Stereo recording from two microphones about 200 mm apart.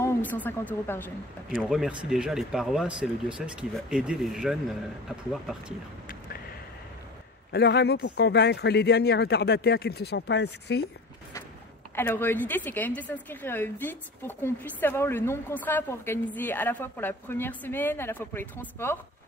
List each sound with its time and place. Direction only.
0.0 s speech: 10° left (ahead or behind)
1.6 s speech: 5° right (ahead or behind)
6.0 s a sound: 45° left (ahead or behind)
7.5 s speech: 55° left (ahead or behind)
11.9 s a woman's voice: 10° left (ahead or behind)